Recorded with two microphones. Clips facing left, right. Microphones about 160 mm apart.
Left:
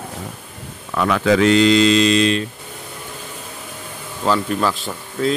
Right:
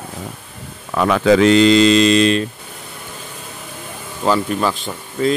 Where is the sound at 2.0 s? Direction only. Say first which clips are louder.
Right 3 dB; 50° right (ahead or behind).